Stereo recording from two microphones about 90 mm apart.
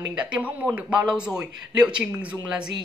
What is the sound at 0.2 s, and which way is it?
Speech, 15° right (ahead or behind).